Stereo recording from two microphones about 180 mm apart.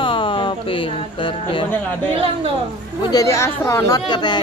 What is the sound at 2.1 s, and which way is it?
Speech, 30° right (ahead or behind).